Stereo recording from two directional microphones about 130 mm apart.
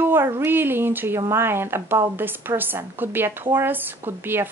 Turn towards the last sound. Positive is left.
turn(degrees=-15)  # may be behind; listen again after turning